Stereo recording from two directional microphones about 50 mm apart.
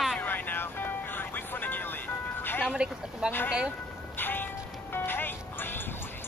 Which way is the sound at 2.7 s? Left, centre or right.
Right.